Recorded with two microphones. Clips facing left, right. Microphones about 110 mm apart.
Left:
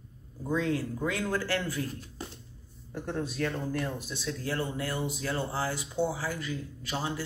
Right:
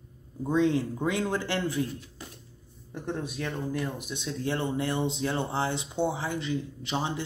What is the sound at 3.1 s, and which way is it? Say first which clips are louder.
Speech: left 1 dB; 10° right (ahead or behind).